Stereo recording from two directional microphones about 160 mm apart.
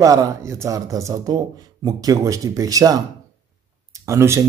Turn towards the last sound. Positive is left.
turn(degrees=-20)  # may be behind; listen again after turning